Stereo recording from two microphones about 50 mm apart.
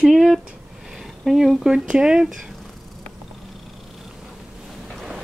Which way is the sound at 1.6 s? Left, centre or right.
Centre.